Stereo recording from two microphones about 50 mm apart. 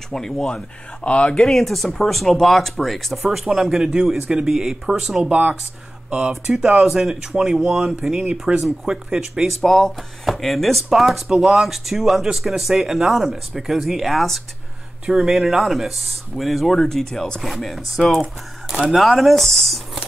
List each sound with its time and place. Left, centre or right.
0.1 s speech: centre
1.4 s speech: centre
3.3 s speech: centre
5.3 s speech: right
6.0 s speech: centre
6.5 s speech: centre
8.3 s speech: centre
9.6 s speech: centre